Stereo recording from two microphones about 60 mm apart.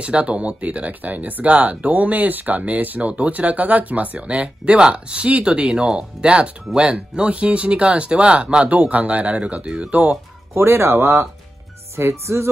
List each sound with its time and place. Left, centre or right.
0.0 s speech: centre
10.5 s speech: right
12.0 s music: right